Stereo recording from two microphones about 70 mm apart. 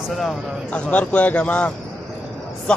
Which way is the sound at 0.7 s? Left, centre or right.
Centre.